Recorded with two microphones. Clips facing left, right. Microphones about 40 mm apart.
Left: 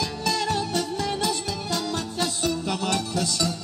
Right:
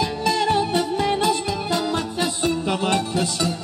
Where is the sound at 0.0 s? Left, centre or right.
Right.